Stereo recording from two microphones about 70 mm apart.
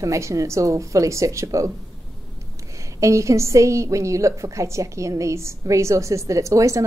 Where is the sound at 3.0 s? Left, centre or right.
Right.